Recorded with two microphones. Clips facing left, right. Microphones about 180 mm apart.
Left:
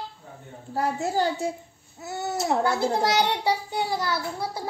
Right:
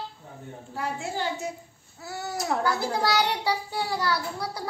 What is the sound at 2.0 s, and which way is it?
A child's voice, 20° left (ahead or behind).